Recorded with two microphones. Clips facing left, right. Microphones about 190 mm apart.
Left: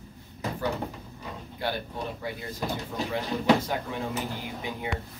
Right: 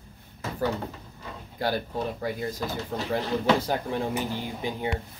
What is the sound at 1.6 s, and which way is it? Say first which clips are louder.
Speech: right 4 dB; 40° right (ahead or behind).